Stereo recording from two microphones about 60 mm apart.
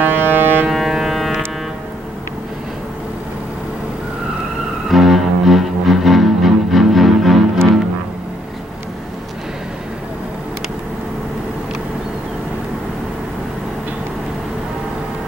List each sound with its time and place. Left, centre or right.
0.0 s ship: right
0.7 s civil defense siren: centre
4.8 s music: centre